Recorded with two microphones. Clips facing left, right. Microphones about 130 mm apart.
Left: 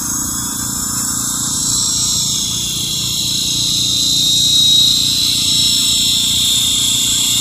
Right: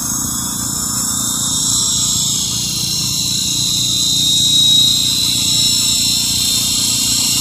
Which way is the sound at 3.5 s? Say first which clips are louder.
Even; 45° right (ahead or behind).